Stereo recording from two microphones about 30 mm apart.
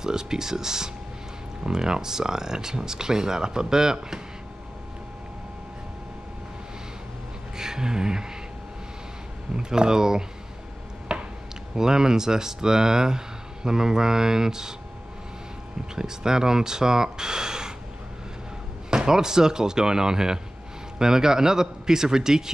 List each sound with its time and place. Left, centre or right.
0.0 s speech: right
7.5 s speech: centre
9.6 s speech: right
11.1 s a sound: right
11.7 s speech: centre
15.9 s speech: right
18.9 s speech: right